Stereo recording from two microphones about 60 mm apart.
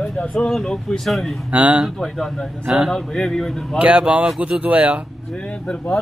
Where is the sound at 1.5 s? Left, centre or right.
Centre.